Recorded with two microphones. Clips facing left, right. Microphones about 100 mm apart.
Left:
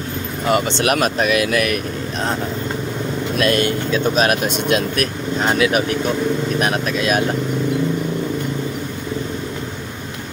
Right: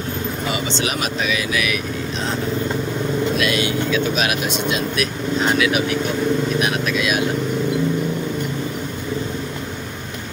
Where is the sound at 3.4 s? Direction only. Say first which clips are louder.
Left 3 dB; 45° left (ahead or behind).